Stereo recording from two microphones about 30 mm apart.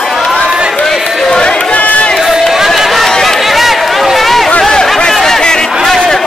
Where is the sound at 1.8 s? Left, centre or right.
Left.